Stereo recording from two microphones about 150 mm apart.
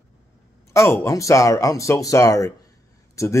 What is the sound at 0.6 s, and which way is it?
Speech, 20° left (ahead or behind).